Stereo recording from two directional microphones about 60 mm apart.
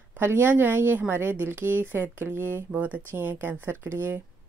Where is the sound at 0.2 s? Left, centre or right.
Right.